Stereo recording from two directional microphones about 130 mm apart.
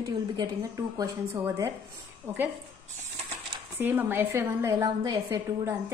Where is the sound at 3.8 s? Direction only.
15° right (ahead or behind).